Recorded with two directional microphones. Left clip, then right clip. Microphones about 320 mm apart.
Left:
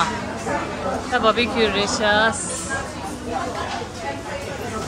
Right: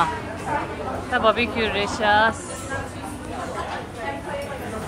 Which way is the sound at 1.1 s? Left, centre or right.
Centre.